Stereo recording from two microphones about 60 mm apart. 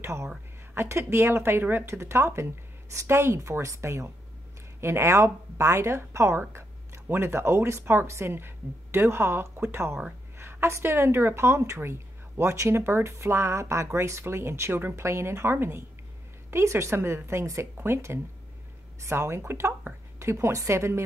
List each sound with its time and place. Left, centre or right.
0.0 s a woman's voice: right
1.9 s a woman's voice: right
4.7 s a woman's voice: right
15.0 s a woman's voice: right